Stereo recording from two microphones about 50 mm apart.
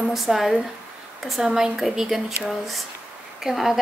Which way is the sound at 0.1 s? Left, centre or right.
Centre.